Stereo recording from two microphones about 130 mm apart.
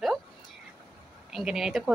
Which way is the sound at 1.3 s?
5° right (ahead or behind).